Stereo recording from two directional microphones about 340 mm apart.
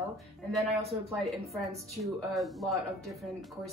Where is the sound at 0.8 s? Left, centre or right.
Centre.